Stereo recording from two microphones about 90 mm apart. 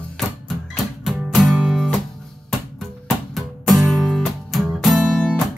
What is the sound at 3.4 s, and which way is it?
Music, centre (ahead or behind).